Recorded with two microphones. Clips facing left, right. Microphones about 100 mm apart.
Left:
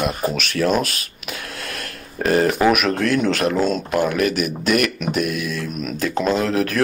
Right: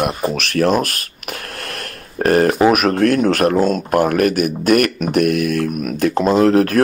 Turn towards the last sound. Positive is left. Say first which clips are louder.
# right 7 dB
turn(degrees=-45)  # may be behind; listen again after turning